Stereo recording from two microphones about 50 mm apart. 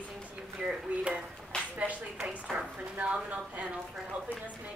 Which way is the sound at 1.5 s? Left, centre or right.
Centre.